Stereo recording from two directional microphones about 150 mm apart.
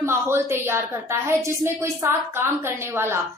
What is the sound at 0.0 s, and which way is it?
A woman's voice, 15° right (ahead or behind).